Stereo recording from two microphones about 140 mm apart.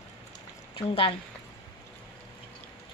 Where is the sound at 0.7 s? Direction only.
40° left (ahead or behind).